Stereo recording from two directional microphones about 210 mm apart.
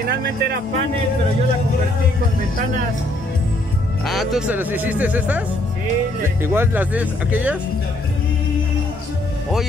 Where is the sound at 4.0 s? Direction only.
Centre (ahead or behind).